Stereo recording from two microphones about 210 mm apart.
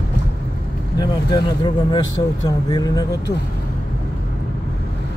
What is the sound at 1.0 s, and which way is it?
Speech, 20° left (ahead or behind).